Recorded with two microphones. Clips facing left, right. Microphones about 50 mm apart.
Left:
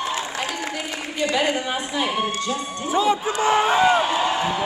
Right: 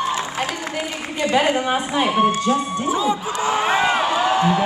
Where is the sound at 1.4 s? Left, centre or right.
Right.